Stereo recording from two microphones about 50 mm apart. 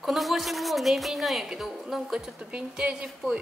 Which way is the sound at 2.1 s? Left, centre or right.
Right.